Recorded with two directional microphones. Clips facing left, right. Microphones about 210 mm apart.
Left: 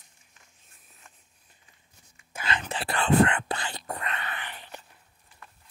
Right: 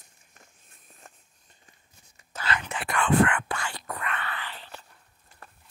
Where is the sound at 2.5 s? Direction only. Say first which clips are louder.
Even; 35° left (ahead or behind); by 4.8 s 15° left (ahead or behind).